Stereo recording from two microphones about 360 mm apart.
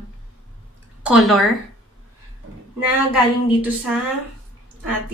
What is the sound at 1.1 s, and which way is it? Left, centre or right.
Speech, centre.